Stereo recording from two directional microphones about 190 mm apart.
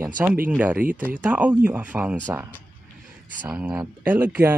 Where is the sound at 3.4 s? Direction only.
10° right (ahead or behind).